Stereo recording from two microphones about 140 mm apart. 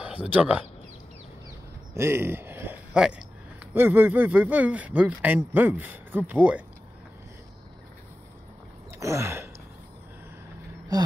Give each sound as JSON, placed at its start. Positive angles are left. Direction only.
{"t": 0.0, "sound": "speech", "side_deg": -10}
{"t": 2.0, "sound": "speech", "side_deg": -20}
{"t": 9.0, "sound": "a sound", "side_deg": -20}